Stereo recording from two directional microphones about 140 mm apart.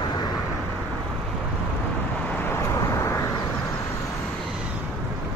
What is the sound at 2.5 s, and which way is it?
Vehicle, 20° left (ahead or behind).